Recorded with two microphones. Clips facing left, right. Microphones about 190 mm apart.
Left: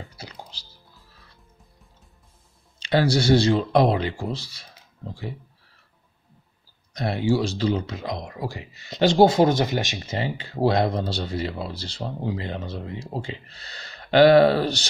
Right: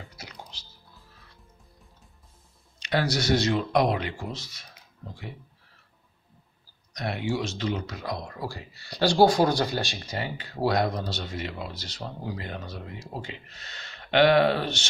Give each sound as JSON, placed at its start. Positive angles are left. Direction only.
{"t": 0.2, "sound": "music", "side_deg": 35}
{"t": 2.8, "sound": "speech", "side_deg": 30}
{"t": 6.9, "sound": "speech", "side_deg": 30}